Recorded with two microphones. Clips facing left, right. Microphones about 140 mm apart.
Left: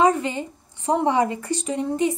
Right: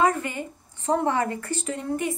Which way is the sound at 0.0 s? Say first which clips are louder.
Left 4 dB; 20° left (ahead or behind).